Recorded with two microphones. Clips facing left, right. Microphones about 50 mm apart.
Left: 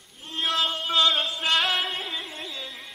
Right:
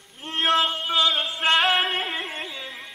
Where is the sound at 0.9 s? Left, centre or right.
Centre.